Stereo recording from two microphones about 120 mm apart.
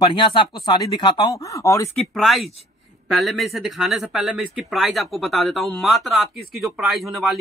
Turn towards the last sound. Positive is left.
turn(degrees=0)  # may be behind; listen again after turning